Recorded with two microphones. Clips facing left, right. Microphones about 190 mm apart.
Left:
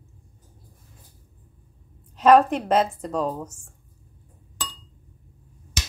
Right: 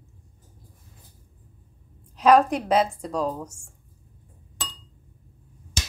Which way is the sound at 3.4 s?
10° right (ahead or behind).